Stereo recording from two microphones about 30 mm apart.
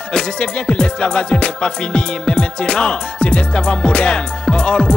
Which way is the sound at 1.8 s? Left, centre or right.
Left.